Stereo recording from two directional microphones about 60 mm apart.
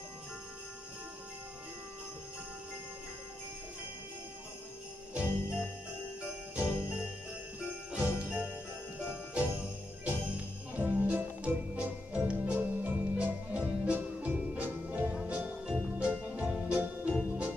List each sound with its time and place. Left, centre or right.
5.1 s jingle bell: centre
10.0 s jingle bell: right
16.0 s music: right